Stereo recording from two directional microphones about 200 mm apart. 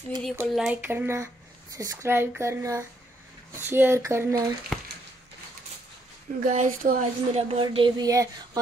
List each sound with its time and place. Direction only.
0.4 s speech: 5° right (ahead or behind)
4.7 s a sound: centre (ahead or behind)
6.4 s speech: 40° right (ahead or behind); by 8.5 s 20° right (ahead or behind)